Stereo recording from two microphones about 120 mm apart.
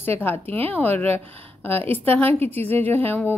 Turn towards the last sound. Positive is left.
turn(degrees=15)  # may be behind; listen again after turning